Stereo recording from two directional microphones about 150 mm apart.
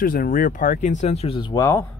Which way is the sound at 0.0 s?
70° left (ahead or behind).